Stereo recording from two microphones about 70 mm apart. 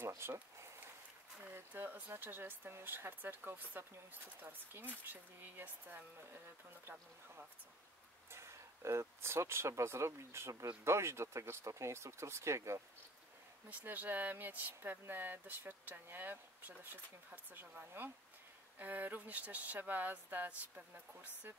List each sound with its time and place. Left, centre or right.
0.2 s speech: right
1.4 s speech: right
8.3 s speech: right
13.7 s speech: right